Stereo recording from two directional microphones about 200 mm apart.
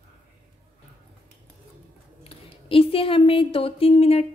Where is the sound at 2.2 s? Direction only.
25° left (ahead or behind).